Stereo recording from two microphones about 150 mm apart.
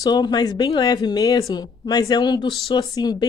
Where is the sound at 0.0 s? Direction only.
25° left (ahead or behind).